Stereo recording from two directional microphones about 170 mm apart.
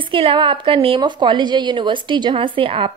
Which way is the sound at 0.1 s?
30° right (ahead or behind).